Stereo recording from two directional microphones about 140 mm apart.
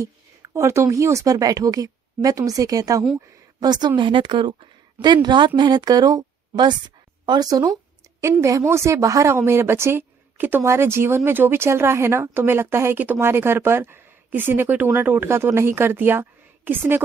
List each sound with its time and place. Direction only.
0.0 s a woman's voice: 20° right (ahead or behind)